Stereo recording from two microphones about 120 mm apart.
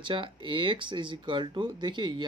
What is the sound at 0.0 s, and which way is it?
Speech, 45° right (ahead or behind).